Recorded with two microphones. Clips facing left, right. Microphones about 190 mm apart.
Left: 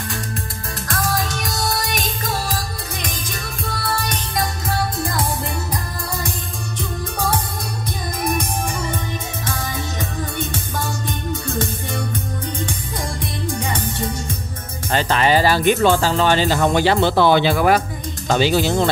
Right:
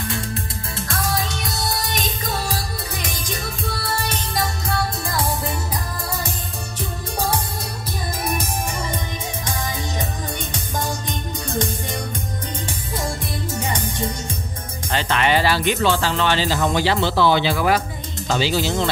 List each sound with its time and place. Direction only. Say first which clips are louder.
14.9 s speech: left 3 dB; 40° left (ahead or behind)